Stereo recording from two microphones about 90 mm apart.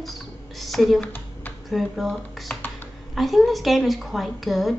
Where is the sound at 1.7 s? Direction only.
Centre (ahead or behind).